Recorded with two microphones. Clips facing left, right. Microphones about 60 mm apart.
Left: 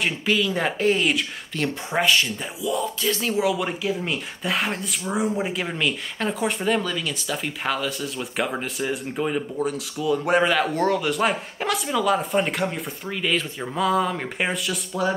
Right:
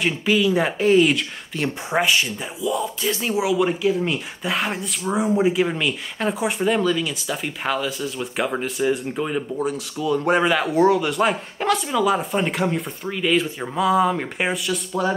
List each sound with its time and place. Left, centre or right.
0.0 s speech: centre
1.5 s speech: centre
2.6 s speech: centre
3.0 s speech: centre